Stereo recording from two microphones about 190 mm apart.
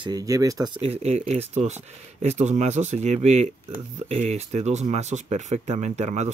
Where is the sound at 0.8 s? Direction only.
35° right (ahead or behind).